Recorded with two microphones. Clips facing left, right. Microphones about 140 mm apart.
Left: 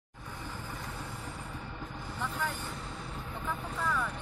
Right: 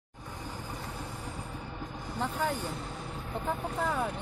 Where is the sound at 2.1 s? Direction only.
35° right (ahead or behind).